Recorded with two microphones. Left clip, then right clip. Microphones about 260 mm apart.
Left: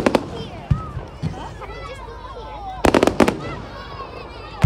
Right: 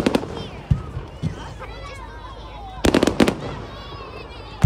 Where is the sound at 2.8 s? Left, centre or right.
Centre.